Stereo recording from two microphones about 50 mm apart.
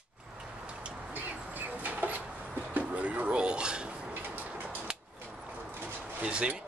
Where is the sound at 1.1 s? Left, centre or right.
Right; by 3.9 s centre.